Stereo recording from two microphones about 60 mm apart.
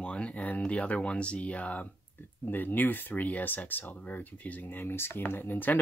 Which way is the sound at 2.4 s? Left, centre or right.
Left.